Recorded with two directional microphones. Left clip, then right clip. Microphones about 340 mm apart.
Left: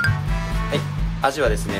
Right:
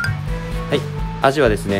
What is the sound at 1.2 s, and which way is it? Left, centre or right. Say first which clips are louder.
Speech: right 5 dB; right.